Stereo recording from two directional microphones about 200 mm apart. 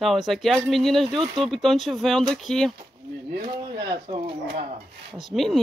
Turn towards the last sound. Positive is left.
turn(degrees=0)  # may be behind; listen again after turning